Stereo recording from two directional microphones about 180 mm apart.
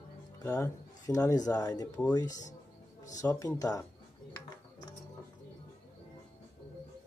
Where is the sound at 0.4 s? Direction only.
15° left (ahead or behind).